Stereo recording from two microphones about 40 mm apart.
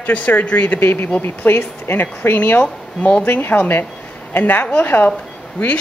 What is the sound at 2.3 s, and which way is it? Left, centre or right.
Speech, left.